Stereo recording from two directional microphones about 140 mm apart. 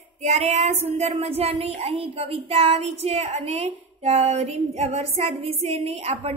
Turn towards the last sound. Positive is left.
turn(degrees=-45)  # may be behind; listen again after turning